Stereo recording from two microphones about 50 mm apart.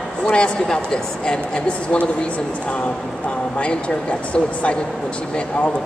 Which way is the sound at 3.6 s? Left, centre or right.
Left.